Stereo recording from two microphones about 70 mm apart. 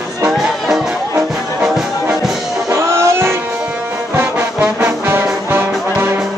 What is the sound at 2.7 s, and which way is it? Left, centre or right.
Music, right.